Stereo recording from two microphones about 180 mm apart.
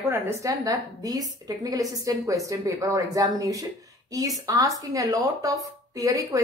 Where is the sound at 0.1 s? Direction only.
15° right (ahead or behind).